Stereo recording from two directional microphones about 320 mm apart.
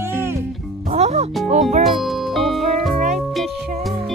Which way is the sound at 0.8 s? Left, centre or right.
Centre.